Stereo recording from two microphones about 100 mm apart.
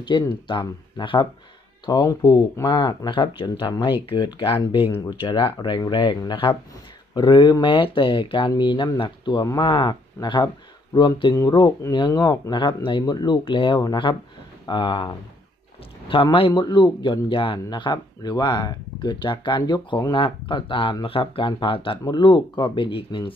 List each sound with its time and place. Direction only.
0.1 s speech: 45° left (ahead or behind)
1.9 s speech: 40° left (ahead or behind)
16.3 s speech: 60° left (ahead or behind)
16.6 s speech: 45° left (ahead or behind)
22.0 s speech: 50° left (ahead or behind)